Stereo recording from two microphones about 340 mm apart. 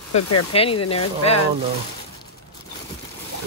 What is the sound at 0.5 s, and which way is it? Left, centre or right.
Speech, centre.